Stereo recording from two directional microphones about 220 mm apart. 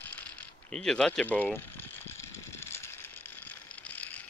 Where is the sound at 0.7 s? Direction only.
5° left (ahead or behind).